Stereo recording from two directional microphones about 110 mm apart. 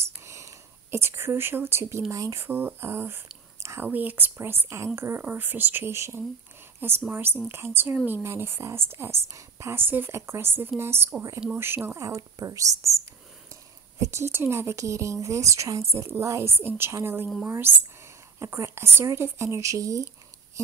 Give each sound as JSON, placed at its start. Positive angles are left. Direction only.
{"t": 0.2, "sound": "speech", "side_deg": -30}
{"t": 14.0, "sound": "speech", "side_deg": -25}
{"t": 18.4, "sound": "speech", "side_deg": -25}